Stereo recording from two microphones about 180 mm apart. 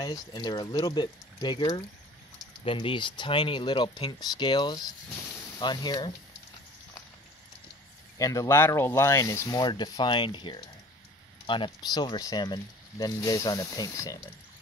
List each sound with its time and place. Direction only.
0.0 s speech: 25° left (ahead or behind)
8.2 s speech: 20° left (ahead or behind)